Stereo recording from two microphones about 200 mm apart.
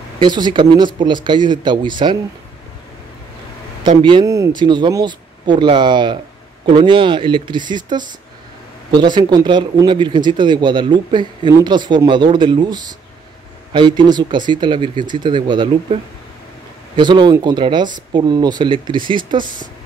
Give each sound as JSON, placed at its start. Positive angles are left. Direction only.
{"t": 0.2, "sound": "speech", "side_deg": -20}
{"t": 3.9, "sound": "speech", "side_deg": -25}